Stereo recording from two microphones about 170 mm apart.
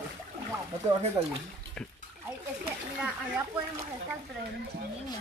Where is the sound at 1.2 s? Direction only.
30° right (ahead or behind).